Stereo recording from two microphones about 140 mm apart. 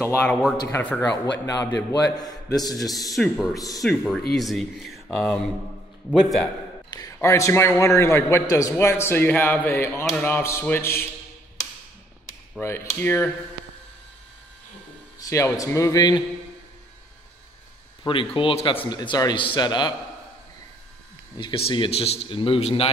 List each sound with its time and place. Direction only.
0.0 s speech: 15° left (ahead or behind)
1.2 s a man's voice: 25° left (ahead or behind)
3.2 s speech: centre (ahead or behind)
6.9 s a man's voice: 25° left (ahead or behind)
12.5 s speech: 15° left (ahead or behind)
15.1 s a man's voice: 25° left (ahead or behind)
18.0 s a man's voice: 40° left (ahead or behind)
21.4 s a man's voice: 40° left (ahead or behind)